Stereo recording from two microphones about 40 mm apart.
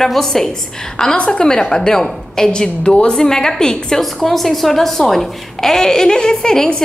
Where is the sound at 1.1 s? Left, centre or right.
Left.